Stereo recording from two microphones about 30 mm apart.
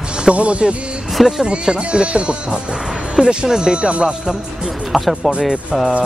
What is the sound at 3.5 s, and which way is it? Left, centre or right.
Speech, right.